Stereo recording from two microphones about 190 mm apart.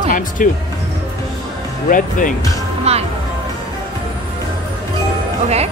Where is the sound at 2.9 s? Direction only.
35° right (ahead or behind).